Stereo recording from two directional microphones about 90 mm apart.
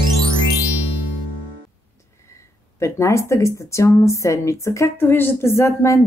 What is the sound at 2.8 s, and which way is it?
Speech, 30° left (ahead or behind).